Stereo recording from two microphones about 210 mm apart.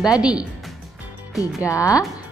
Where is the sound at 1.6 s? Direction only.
15° left (ahead or behind).